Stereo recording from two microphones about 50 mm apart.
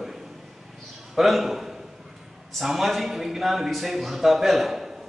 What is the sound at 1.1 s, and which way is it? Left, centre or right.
A man's voice, centre.